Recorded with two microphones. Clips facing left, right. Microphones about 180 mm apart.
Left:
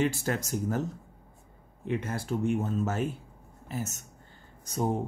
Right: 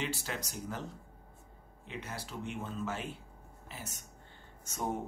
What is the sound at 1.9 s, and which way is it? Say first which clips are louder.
Speech: left 12 dB; 50° left (ahead or behind).